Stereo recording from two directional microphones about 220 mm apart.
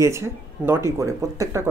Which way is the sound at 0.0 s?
10° right (ahead or behind).